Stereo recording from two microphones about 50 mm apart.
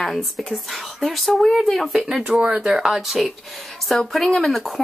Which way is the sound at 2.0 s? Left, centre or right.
Centre.